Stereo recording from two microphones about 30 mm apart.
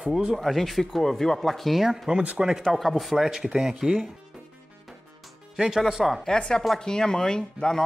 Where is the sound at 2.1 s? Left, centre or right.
Right.